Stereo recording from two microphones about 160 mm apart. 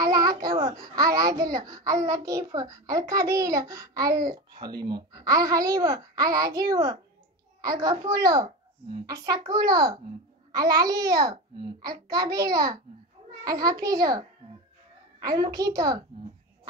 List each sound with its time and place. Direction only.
0.0 s a child's voice: 25° right (ahead or behind)
8.0 s a child's voice: 25° right (ahead or behind)
9.5 s a child's voice: 25° right (ahead or behind)
15.2 s a child's voice: 25° right (ahead or behind)